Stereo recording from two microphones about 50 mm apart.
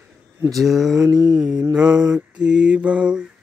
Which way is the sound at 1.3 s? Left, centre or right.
Centre.